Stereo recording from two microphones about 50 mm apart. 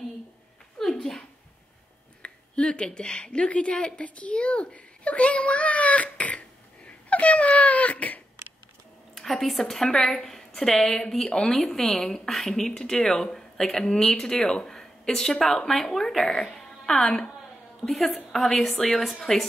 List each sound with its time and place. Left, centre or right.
0.9 s speech: centre
2.2 s speech: left
6.9 s a sound: left
9.1 s a woman's voice: centre
16.5 s music: centre
18.0 s a woman's voice: centre